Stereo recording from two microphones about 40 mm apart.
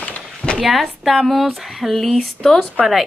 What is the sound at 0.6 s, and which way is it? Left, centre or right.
Speech, centre.